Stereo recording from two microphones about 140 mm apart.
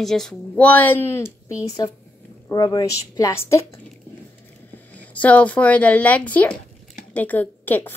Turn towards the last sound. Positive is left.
turn(degrees=15)  # may be behind; listen again after turning